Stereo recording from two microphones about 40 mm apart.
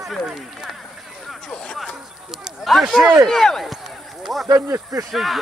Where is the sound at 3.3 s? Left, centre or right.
Centre.